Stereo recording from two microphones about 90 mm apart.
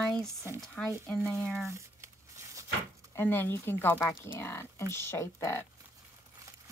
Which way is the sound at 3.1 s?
25° left (ahead or behind).